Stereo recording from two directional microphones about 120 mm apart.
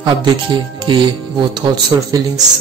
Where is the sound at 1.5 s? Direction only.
30° right (ahead or behind).